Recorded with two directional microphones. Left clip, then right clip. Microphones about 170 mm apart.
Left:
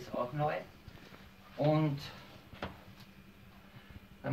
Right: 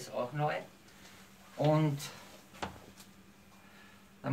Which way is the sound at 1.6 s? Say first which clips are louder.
Right 1 dB; 25° right (ahead or behind).